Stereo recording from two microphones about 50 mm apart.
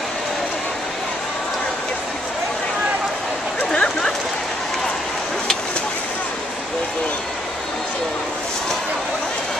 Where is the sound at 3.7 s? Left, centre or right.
Centre.